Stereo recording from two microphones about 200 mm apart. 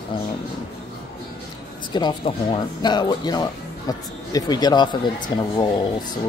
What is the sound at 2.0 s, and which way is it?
Speech, 25° left (ahead or behind).